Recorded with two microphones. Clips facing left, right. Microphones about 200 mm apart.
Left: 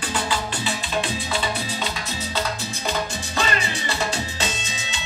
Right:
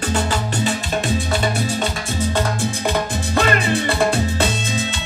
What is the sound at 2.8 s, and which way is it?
Music, 55° right (ahead or behind).